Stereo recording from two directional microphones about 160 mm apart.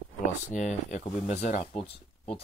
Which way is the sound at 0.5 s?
50° left (ahead or behind).